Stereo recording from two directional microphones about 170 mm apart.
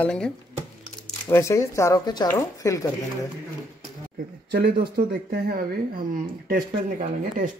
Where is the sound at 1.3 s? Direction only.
15° left (ahead or behind).